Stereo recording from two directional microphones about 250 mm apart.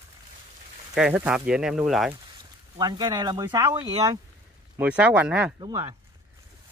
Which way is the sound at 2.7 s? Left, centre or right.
Centre.